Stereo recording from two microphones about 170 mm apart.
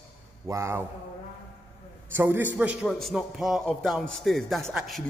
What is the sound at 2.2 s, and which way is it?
A man's voice, 10° right (ahead or behind).